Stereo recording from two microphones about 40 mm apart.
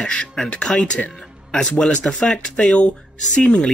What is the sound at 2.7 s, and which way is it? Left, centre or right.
Speech, left.